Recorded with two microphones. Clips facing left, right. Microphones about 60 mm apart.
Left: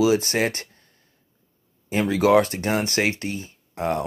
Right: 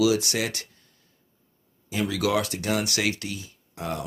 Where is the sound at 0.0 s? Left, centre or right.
Left.